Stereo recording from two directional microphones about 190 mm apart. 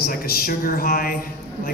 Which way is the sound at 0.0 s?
50° left (ahead or behind).